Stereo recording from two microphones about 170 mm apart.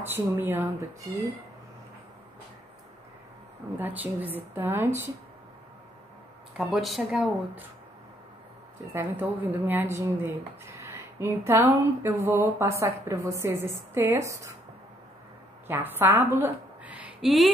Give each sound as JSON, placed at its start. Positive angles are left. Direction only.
{"t": 0.0, "sound": "speech", "side_deg": -15}
{"t": 3.7, "sound": "speech", "side_deg": -10}
{"t": 6.5, "sound": "speech", "side_deg": 0}
{"t": 8.9, "sound": "speech", "side_deg": -10}
{"t": 15.6, "sound": "a woman's voice", "side_deg": -10}